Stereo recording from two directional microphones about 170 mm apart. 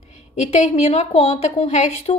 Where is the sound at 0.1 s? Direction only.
45° left (ahead or behind).